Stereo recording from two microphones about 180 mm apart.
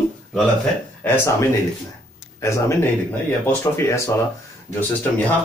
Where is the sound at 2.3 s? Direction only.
15° left (ahead or behind).